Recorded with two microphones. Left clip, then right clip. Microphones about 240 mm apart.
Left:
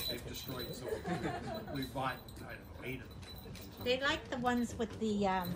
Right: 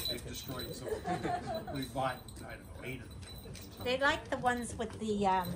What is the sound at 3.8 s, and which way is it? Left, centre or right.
A woman's voice, right.